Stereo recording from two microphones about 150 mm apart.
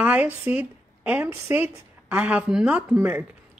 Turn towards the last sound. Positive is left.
turn(degrees=-10)  # may be behind; listen again after turning